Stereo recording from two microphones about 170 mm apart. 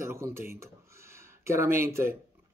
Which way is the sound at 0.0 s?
15° right (ahead or behind).